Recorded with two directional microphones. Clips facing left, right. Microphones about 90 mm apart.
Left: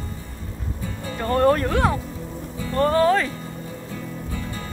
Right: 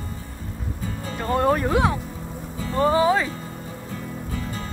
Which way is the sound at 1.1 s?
5° right (ahead or behind).